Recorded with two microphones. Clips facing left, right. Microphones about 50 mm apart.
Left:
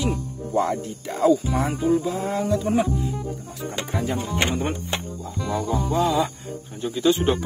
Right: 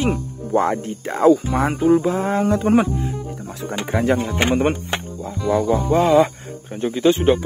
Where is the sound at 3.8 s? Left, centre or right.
Right.